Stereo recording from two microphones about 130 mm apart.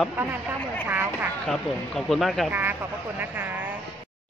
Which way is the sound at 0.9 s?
15° right (ahead or behind).